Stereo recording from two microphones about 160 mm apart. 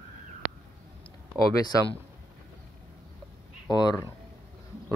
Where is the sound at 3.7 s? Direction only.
25° left (ahead or behind).